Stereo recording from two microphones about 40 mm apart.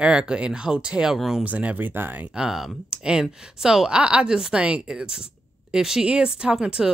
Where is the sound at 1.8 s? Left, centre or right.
Right.